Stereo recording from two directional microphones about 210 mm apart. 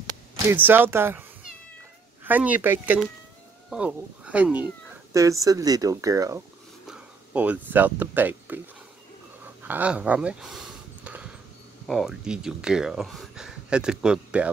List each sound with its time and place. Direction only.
0.5 s speech: 10° right (ahead or behind)
2.2 s speech: 10° right (ahead or behind)
9.6 s a sound: 10° right (ahead or behind)
11.9 s speech: centre (ahead or behind)